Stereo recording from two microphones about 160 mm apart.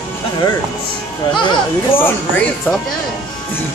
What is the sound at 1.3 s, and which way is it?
Speech, 30° left (ahead or behind).